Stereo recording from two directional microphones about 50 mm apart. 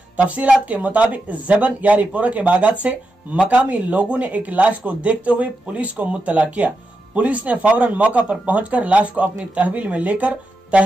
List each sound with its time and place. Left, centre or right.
0.2 s speech: right